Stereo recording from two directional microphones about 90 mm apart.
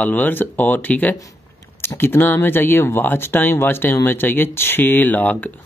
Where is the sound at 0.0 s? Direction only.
20° left (ahead or behind).